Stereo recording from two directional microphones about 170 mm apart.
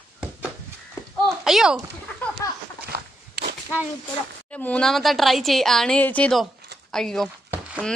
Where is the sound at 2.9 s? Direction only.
65° right (ahead or behind).